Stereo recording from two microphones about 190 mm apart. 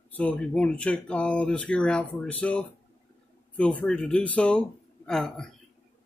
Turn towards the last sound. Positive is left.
turn(degrees=5)  # may be behind; listen again after turning